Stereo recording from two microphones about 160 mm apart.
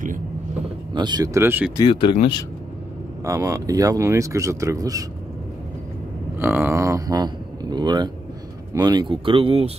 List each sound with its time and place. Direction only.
0.9 s speech: 25° right (ahead or behind)
1.8 s speech: 30° left (ahead or behind)
3.3 s speech: 20° right (ahead or behind)
6.3 s speech: 15° right (ahead or behind); by 9.7 s 35° right (ahead or behind)